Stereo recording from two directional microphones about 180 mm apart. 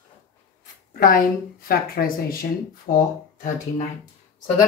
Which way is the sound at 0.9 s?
55° left (ahead or behind).